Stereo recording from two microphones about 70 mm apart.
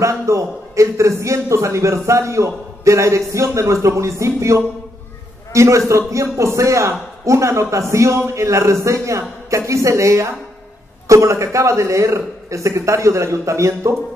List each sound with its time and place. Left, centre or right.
0.0 s a man's voice: right